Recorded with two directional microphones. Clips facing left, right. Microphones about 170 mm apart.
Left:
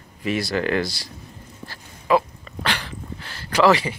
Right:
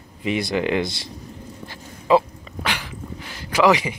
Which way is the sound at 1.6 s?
25° right (ahead or behind).